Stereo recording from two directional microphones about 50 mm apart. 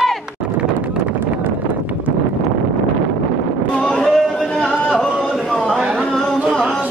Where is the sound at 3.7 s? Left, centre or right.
Left.